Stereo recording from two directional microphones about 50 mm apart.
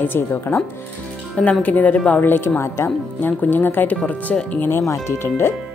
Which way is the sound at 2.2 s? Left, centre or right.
Left.